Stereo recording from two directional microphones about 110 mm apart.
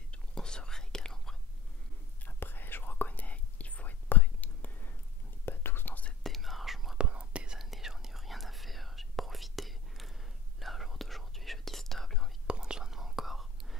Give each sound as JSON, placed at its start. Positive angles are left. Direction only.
{"t": 0.1, "sound": "whispering", "side_deg": 5}
{"t": 2.2, "sound": "whispering", "side_deg": 20}
{"t": 6.2, "sound": "whispering", "side_deg": 0}
{"t": 12.4, "sound": "whispering", "side_deg": -10}